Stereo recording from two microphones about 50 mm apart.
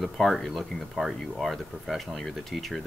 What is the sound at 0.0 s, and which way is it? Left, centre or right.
Speech, centre.